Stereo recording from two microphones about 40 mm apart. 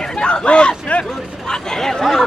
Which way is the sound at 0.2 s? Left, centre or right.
Left.